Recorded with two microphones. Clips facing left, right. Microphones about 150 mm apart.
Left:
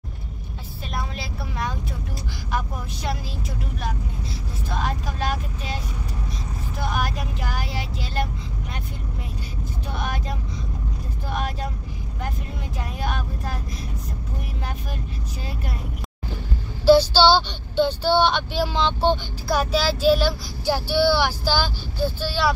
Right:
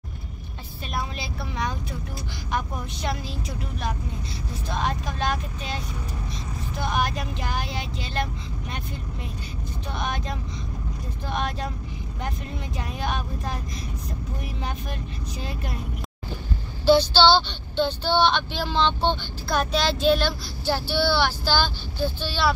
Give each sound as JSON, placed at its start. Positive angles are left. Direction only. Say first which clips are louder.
{"t": 1.1, "sound": "speech", "louder": "even", "side_deg": 5}
{"t": 4.6, "sound": "speech", "louder": "even", "side_deg": 5}
{"t": 6.8, "sound": "speech", "louder": "right 1 dB", "side_deg": 5}
{"t": 9.9, "sound": "speech", "louder": "even", "side_deg": 5}
{"t": 12.7, "sound": "speech", "louder": "even", "side_deg": 5}
{"t": 16.8, "sound": "speech", "louder": "left 3 dB", "side_deg": 10}